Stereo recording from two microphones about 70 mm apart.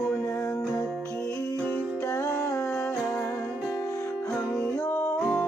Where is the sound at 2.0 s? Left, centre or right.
Left.